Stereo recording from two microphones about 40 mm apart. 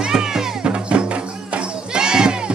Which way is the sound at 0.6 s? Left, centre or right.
Right.